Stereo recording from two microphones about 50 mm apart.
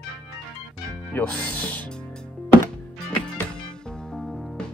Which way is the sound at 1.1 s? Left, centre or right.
Left.